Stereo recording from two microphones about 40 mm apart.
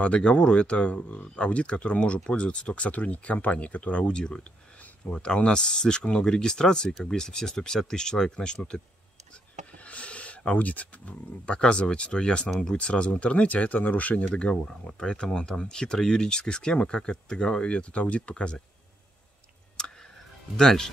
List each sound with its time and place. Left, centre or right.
0.0 s speech: left
2.9 s speech: left
4.0 s speech: left
6.9 s speech: centre
7.2 s speech: centre
9.8 s speech: left
14.3 s speech: left
19.8 s tick: centre
20.5 s speech: centre